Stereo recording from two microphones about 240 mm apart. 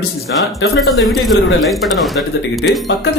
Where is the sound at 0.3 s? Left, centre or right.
Left.